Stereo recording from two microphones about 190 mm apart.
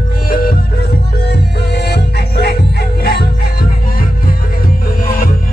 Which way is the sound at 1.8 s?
60° left (ahead or behind).